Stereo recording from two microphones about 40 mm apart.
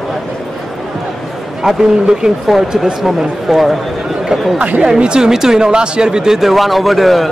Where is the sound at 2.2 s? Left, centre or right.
Centre.